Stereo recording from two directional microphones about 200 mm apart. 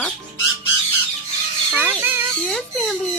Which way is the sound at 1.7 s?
10° right (ahead or behind).